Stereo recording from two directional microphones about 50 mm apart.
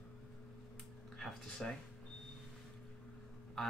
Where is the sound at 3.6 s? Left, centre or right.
Centre.